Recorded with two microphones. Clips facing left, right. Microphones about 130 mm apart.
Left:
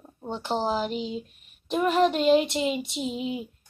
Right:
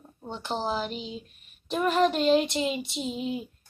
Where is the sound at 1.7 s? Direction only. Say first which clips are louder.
Left 2 dB; 15° left (ahead or behind).